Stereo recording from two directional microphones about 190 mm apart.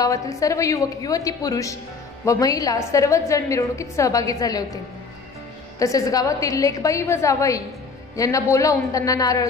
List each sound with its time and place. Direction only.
0.0 s a woman's voice: 15° left (ahead or behind)
5.8 s a woman's voice: 20° left (ahead or behind)